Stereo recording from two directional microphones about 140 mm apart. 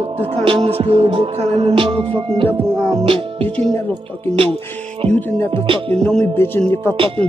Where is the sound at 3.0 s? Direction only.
40° right (ahead or behind).